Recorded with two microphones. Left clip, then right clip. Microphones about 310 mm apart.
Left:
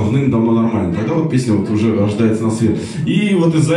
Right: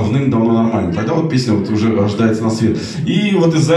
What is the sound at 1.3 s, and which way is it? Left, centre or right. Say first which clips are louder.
A man's voice: even; centre.